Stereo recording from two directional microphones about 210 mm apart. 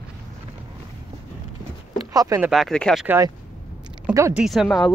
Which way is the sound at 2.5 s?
Centre (ahead or behind).